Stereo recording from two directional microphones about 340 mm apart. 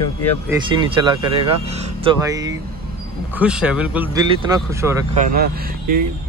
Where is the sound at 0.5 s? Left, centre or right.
Centre.